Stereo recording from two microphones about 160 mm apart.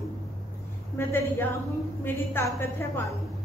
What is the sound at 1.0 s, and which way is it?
A woman's voice, 15° left (ahead or behind).